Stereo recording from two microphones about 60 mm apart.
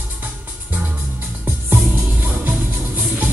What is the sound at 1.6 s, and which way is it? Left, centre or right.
Music, right.